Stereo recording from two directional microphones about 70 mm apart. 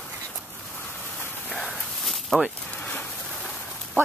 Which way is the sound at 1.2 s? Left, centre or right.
Left.